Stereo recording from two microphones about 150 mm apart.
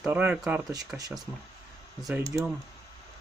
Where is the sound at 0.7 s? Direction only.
25° right (ahead or behind).